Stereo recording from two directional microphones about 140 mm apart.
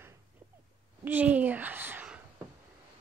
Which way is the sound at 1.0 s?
10° right (ahead or behind).